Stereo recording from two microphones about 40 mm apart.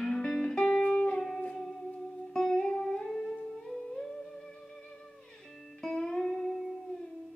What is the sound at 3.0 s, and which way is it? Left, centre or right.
Music, centre.